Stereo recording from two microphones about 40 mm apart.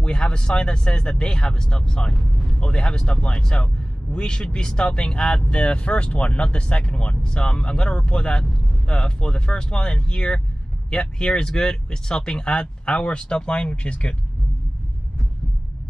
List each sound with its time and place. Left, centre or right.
0.0 s speech: left